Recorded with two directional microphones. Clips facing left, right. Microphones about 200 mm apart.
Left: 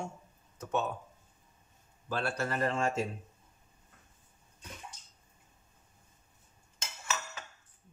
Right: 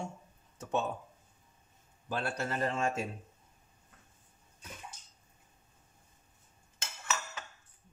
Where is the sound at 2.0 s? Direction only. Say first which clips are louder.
Left 1 dB; 20° right (ahead or behind).